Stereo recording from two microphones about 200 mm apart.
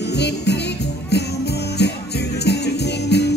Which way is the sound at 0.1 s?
55° left (ahead or behind).